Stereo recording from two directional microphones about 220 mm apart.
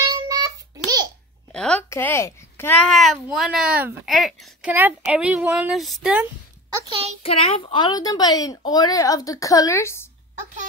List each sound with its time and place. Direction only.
0.0 s child singing: 20° right (ahead or behind)
1.5 s speech: 5° left (ahead or behind)
6.7 s a child's voice: 25° right (ahead or behind)
7.2 s speech: 25° left (ahead or behind)